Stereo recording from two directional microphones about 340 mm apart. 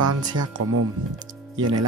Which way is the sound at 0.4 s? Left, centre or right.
Right.